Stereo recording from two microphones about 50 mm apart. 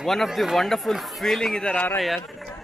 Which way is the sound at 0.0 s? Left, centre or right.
Centre.